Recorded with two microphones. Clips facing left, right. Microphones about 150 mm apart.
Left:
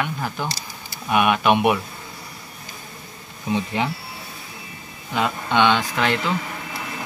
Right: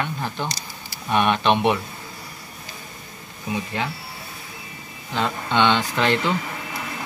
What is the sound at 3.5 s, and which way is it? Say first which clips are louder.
Speech: left 4 dB; 20° left (ahead or behind).